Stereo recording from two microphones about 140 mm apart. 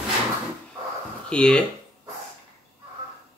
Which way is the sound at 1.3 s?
5° left (ahead or behind).